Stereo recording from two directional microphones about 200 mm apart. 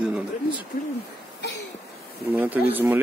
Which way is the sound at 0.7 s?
40° left (ahead or behind).